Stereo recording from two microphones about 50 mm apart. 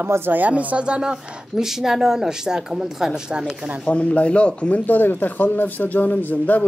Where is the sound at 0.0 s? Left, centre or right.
Right.